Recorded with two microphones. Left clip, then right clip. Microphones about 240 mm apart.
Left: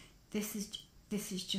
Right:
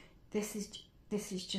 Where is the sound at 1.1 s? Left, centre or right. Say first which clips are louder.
Even; left.